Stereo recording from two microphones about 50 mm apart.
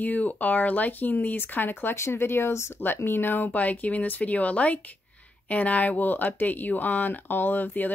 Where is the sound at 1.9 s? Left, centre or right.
Left.